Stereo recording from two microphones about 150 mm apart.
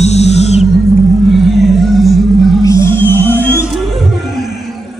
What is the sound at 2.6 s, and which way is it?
Music, 20° left (ahead or behind).